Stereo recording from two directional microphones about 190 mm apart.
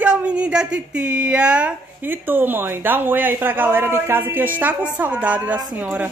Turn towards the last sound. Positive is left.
turn(degrees=-5)  # may be behind; listen again after turning